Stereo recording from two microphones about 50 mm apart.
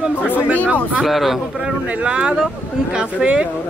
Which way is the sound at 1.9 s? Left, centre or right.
Right.